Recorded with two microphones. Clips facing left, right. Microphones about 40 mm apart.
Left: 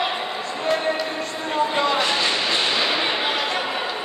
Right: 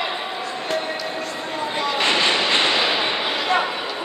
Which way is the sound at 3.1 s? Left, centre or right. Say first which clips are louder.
Left 1 dB; left.